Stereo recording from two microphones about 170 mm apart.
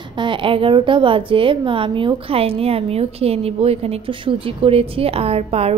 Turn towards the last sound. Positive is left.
turn(degrees=-35)  # may be behind; listen again after turning